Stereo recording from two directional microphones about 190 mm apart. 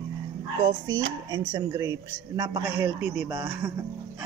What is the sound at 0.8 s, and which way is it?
Dishes, 85° right.